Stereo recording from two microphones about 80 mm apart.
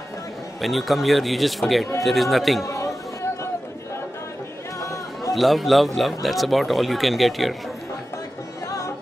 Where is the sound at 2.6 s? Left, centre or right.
Left.